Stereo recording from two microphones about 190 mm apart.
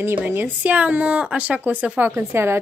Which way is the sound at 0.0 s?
10° right (ahead or behind).